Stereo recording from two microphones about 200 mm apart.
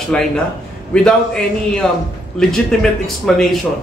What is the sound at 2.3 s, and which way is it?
Speech, 5° left (ahead or behind).